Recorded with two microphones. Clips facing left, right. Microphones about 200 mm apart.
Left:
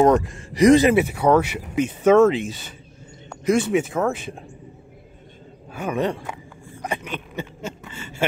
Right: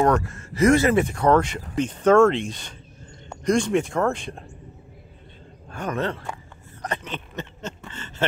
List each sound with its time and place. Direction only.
0.0 s speech: 15° left (ahead or behind)
5.7 s speech: 10° left (ahead or behind)
6.8 s a sound: 10° left (ahead or behind)